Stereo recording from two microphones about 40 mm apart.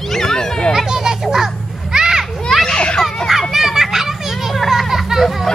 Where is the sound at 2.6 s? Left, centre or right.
Left.